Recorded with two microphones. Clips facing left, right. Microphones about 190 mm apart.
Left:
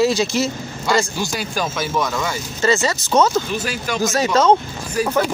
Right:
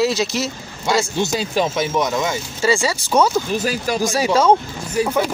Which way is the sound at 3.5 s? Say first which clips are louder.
Right 3 dB; 35° right (ahead or behind).